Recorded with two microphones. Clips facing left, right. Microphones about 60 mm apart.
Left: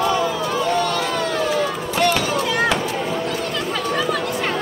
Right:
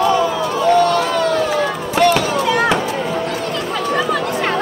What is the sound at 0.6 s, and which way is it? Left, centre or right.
Crowd, right.